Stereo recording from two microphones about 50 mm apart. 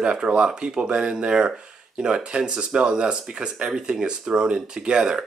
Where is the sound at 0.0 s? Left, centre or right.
Centre.